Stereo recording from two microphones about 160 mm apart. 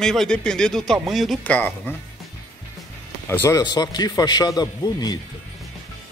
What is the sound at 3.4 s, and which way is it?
Speech, 25° left (ahead or behind).